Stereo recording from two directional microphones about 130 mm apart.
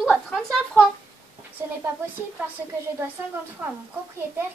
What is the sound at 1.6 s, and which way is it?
Speech, 20° right (ahead or behind).